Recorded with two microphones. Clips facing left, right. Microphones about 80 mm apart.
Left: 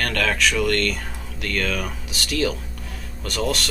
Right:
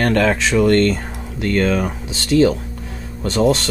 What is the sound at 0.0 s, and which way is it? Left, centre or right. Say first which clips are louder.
Speech: right 6 dB; right.